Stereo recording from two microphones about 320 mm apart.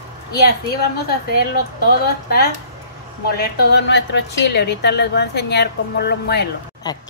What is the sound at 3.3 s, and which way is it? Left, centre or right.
A woman's voice, left.